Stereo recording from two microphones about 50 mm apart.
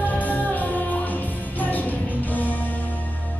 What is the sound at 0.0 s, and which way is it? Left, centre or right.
Music, left.